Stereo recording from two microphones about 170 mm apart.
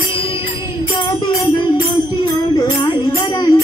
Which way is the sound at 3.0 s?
20° left (ahead or behind).